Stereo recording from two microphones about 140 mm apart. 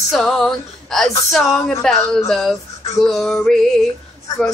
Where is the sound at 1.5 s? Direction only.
20° left (ahead or behind).